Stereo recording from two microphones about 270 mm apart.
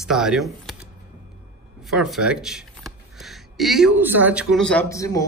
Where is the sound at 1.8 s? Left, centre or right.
Centre.